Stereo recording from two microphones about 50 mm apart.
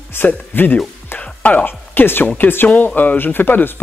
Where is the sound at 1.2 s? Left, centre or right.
Left.